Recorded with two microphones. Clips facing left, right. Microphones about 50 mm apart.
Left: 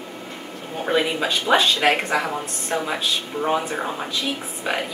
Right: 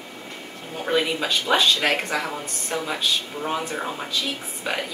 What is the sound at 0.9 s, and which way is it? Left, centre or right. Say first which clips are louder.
Speech: left 1 dB; centre.